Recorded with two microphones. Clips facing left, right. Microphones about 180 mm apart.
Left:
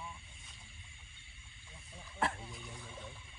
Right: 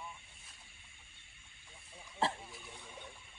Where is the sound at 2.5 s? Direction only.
Centre (ahead or behind).